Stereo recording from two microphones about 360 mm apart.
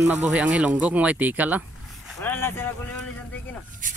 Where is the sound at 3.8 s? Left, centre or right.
Right.